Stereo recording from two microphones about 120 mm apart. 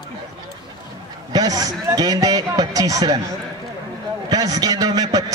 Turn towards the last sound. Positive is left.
turn(degrees=-30)  # may be behind; listen again after turning